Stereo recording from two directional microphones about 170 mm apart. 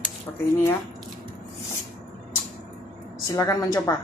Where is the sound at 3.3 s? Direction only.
25° left (ahead or behind).